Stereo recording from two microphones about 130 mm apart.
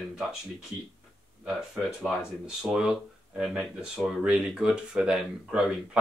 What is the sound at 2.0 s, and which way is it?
Speech, 5° right (ahead or behind).